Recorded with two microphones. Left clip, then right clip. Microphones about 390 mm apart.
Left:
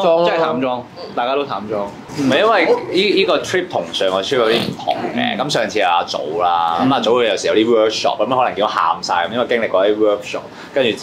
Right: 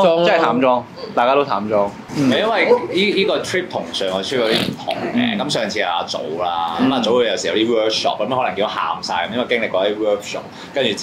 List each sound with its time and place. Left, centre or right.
0.2 s speech: right
2.3 s speech: left